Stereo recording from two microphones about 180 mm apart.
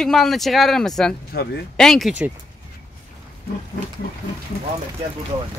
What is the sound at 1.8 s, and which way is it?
Speech, centre (ahead or behind).